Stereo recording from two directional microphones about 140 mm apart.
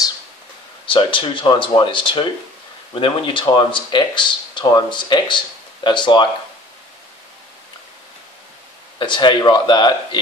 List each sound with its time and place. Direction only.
0.8 s speech: 35° left (ahead or behind)
8.9 s speech: 35° left (ahead or behind)